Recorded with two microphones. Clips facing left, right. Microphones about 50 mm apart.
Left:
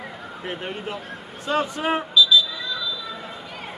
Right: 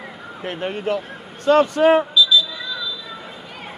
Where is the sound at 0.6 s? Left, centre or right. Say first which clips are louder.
Right 8 dB; right.